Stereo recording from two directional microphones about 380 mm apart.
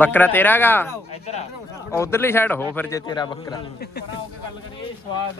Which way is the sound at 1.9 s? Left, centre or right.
Centre.